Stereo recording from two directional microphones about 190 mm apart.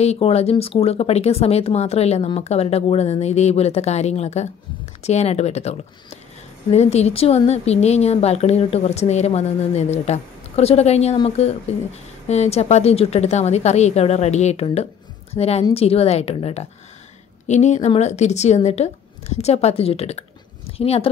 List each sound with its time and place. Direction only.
0.0 s a woman's voice: 35° left (ahead or behind)